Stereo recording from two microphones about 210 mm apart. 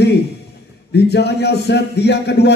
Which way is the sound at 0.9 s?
50° left (ahead or behind).